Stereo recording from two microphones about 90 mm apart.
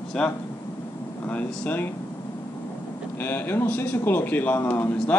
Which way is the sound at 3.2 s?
25° left (ahead or behind).